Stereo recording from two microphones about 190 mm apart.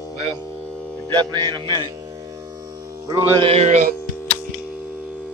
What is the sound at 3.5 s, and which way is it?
Speech, 35° right (ahead or behind).